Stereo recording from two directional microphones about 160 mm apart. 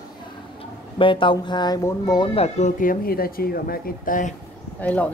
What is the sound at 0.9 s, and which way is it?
Speech, 30° left (ahead or behind).